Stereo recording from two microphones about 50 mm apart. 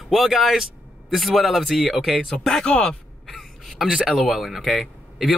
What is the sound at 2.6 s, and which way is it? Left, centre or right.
Speech, centre.